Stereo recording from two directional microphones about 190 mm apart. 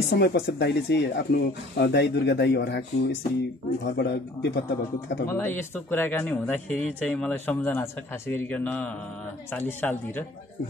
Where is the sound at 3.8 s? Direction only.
60° left (ahead or behind).